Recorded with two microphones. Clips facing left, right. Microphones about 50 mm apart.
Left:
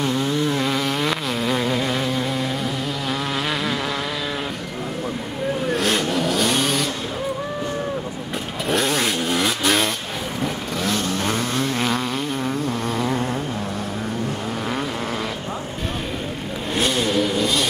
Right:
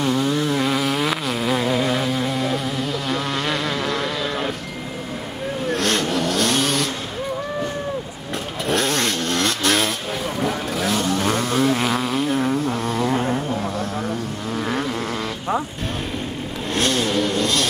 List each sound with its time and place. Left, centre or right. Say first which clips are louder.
0.0 s a sound: right 1 dB; centre
3.1 s insect: even; centre
5.7 s vehicle: right 2 dB; centre
8.6 s chainsaw: even; centre
10.4 s vehicle: right 2 dB; centre
16.7 s vehicle: even; centre